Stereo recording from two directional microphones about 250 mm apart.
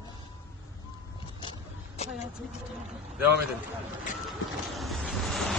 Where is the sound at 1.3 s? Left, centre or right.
Left.